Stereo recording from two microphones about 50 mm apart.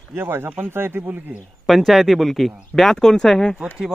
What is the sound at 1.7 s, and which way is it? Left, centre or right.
A man's voice, centre.